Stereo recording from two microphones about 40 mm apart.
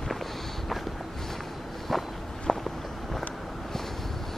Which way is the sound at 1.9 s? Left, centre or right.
Centre.